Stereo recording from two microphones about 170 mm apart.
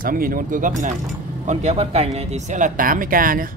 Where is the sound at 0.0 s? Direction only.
55° right (ahead or behind).